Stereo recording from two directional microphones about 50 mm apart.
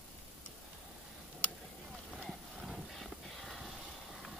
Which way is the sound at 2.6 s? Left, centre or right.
Centre.